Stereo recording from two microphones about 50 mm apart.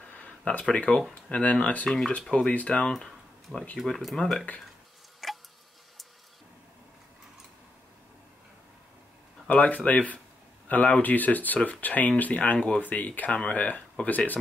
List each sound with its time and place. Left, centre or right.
0.0 s a sound: left
0.7 s speech: left
1.9 s speech: centre
2.3 s speech: left
2.7 s speech: centre
5.2 s a sound: centre
9.5 s speech: left
12.5 s speech: centre
12.9 s speech: left